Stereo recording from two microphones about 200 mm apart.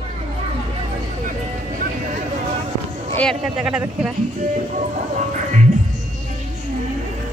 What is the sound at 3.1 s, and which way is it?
Speech, centre (ahead or behind).